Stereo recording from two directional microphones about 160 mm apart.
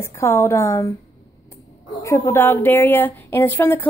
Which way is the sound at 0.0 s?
15° left (ahead or behind).